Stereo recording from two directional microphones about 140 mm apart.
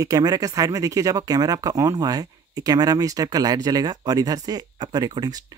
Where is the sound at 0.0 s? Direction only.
25° right (ahead or behind).